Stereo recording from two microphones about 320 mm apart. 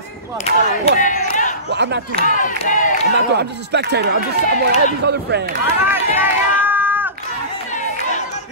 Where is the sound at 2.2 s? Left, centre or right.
Left.